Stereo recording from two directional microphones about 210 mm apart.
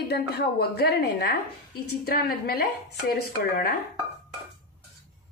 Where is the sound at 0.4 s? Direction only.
50° left (ahead or behind).